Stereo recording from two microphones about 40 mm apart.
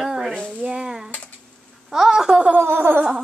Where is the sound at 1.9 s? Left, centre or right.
Centre.